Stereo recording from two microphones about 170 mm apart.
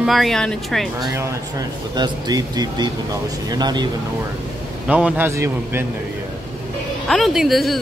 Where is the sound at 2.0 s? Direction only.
25° right (ahead or behind).